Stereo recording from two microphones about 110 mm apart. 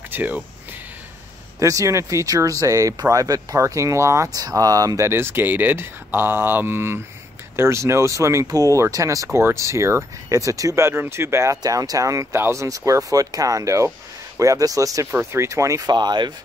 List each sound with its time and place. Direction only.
0.1 s speech: 15° right (ahead or behind)
1.6 s speech: 30° right (ahead or behind)